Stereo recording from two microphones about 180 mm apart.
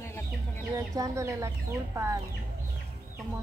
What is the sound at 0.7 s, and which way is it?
Speech, 20° right (ahead or behind).